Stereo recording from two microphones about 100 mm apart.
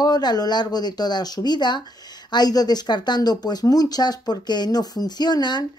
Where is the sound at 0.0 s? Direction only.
45° left (ahead or behind).